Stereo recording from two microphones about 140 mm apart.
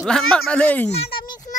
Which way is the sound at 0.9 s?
45° left (ahead or behind).